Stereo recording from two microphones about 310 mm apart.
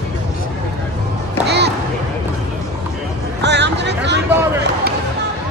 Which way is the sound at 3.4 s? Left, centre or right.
Right.